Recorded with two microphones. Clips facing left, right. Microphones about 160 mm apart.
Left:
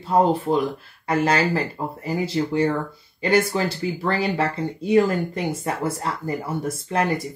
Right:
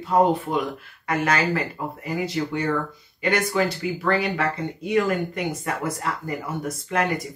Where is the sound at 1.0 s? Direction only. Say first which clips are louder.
Left 2 dB; 30° left (ahead or behind).